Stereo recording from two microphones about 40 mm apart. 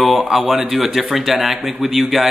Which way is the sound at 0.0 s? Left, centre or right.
Centre.